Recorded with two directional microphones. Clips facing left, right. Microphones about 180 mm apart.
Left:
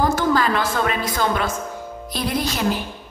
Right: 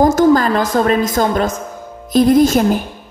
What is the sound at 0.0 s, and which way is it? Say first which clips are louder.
A woman's voice: right 8 dB; 45° right (ahead or behind).